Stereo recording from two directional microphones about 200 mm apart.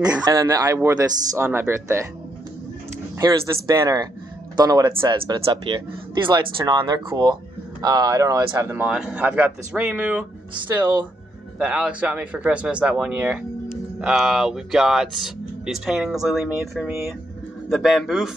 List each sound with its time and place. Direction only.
0.2 s speech: 15° right (ahead or behind)
3.2 s speech: 20° right (ahead or behind)
11.5 s speech: 5° right (ahead or behind)